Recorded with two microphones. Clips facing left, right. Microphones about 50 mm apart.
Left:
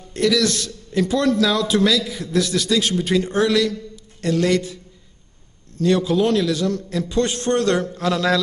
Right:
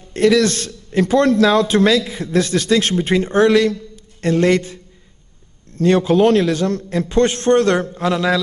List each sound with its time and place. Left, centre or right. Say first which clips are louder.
0.1 s a man's voice: right 5 dB; right
5.8 s a man's voice: right 4 dB; right
7.9 s a man's voice: right 2 dB; centre